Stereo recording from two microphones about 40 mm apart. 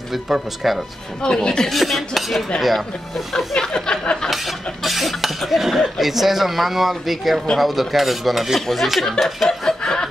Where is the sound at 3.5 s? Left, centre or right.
Centre.